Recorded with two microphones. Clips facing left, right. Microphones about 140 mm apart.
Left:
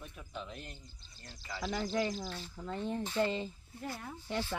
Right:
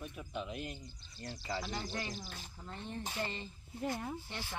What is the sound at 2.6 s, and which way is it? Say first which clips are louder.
Speech: left 9 dB; 90° left.